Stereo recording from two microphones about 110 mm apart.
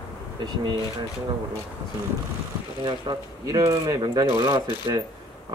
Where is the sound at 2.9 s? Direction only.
40° right (ahead or behind).